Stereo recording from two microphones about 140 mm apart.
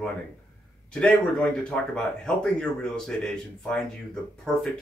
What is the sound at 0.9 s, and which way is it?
Speech, 5° left (ahead or behind).